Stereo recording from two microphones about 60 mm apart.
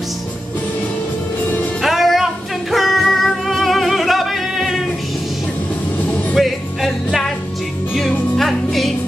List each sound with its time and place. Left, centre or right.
1.8 s music: centre
6.3 s music: centre
8.4 s music: centre